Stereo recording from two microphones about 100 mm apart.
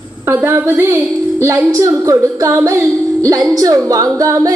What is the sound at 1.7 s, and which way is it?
Female singing, 35° right (ahead or behind).